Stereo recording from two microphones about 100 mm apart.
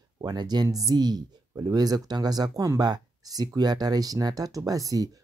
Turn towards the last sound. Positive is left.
turn(degrees=-35)  # may be behind; listen again after turning